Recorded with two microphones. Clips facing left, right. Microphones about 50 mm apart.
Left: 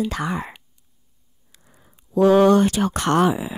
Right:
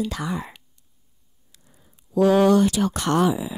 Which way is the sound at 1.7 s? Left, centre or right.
Left.